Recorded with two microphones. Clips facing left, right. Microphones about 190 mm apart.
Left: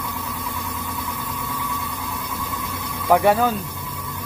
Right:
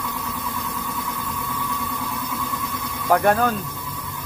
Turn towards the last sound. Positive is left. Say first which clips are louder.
# left 2 dB
turn(degrees=10)  # may be behind; listen again after turning